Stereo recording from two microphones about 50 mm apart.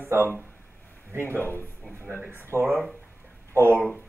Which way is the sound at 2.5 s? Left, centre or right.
Right.